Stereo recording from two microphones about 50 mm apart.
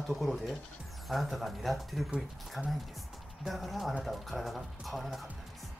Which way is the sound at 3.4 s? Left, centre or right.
Centre.